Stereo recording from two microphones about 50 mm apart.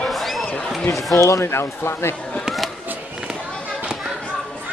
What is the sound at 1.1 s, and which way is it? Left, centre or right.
Speech, left.